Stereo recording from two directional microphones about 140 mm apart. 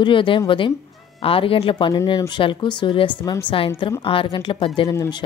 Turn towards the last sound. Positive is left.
turn(degrees=25)  # may be behind; listen again after turning